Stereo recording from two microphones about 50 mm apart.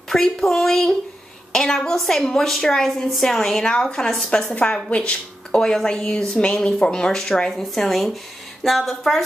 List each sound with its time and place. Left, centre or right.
0.1 s a woman's voice: centre
4.5 s a woman's voice: left; by 9.2 s centre